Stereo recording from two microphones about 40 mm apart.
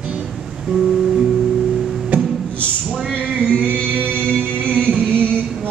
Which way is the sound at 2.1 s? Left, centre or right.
Right.